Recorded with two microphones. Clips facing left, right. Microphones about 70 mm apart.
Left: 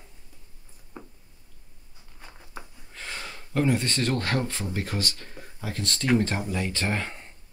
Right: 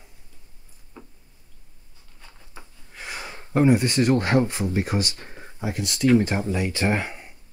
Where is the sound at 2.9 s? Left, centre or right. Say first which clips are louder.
Right 2 dB; centre.